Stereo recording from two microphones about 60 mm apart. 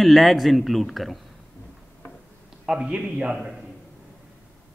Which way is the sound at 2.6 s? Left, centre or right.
Centre.